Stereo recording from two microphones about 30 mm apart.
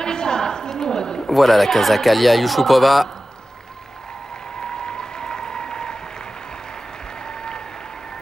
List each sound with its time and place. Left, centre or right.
0.0 s a sound: left
1.2 s speech: centre
4.6 s applause: left
7.2 s applause: left